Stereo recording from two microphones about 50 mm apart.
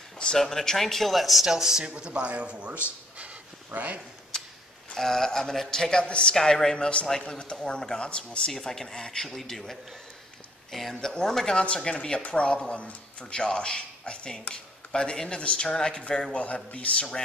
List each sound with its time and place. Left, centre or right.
0.4 s speech: centre
1.9 s a man's voice: right
4.9 s speech: centre
8.5 s speech: centre; by 17.0 s left